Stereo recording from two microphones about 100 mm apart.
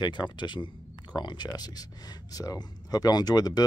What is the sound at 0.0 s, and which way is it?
Speech, 50° left (ahead or behind).